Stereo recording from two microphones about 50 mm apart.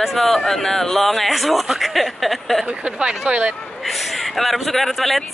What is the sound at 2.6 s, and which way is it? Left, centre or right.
Speech, right.